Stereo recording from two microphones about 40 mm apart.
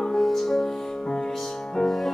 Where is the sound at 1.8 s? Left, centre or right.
Centre.